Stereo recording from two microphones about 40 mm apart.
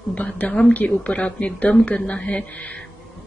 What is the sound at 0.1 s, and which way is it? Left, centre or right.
A woman's voice, left.